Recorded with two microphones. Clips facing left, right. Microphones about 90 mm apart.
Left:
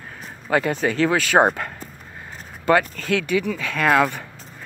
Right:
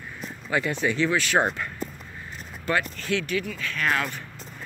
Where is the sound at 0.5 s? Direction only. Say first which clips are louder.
Left 5 dB; 55° left (ahead or behind).